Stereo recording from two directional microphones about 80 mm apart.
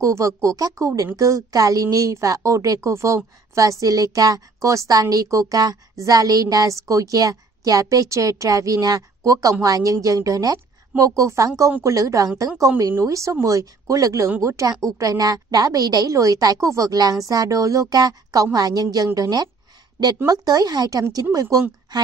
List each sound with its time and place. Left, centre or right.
0.0 s a woman's voice: right